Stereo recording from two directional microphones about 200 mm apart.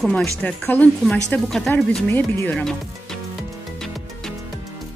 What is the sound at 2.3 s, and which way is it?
Music, 5° left (ahead or behind).